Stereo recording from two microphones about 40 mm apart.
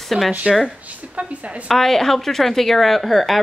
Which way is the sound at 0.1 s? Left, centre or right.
Centre.